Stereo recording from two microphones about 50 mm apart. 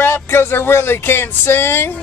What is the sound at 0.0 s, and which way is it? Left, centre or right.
Speech, left.